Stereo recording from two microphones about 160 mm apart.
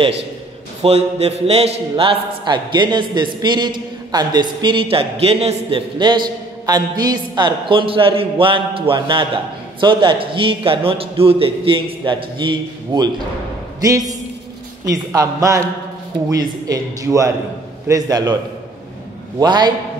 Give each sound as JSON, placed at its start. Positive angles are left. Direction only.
{"t": 0.8, "sound": "a man's voice", "side_deg": -40}
{"t": 19.4, "sound": "a man's voice", "side_deg": -25}